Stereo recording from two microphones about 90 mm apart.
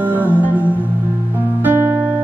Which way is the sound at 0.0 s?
20° right (ahead or behind).